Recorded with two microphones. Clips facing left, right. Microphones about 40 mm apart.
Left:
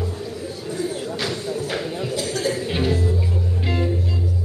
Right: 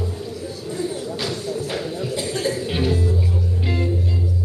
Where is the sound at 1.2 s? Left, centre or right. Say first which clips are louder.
Even; centre.